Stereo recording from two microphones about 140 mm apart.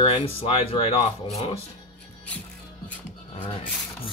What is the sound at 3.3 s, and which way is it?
Speech, 40° left (ahead or behind).